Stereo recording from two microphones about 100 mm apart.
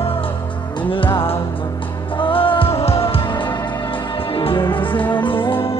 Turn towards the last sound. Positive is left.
turn(degrees=60)  # may be behind; listen again after turning